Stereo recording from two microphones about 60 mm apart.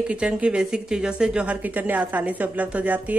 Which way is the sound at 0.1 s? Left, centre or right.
Centre.